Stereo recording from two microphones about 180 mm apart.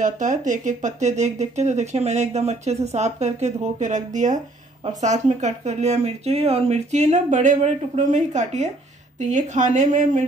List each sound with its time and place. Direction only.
0.0 s speech: 45° right (ahead or behind)